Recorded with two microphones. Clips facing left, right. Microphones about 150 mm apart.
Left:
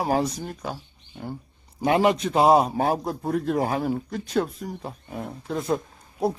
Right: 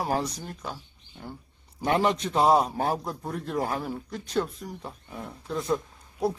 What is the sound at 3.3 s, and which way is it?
Speech, 90° left.